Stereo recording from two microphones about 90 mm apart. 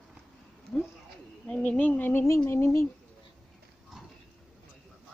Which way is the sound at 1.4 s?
15° left (ahead or behind).